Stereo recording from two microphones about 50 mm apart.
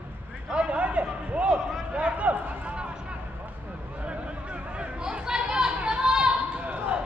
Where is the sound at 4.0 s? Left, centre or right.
Right.